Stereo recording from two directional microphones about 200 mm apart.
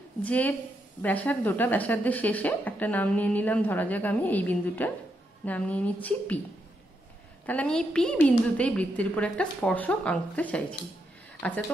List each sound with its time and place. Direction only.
0.2 s a woman's voice: 5° left (ahead or behind)
7.4 s a woman's voice: 5° left (ahead or behind)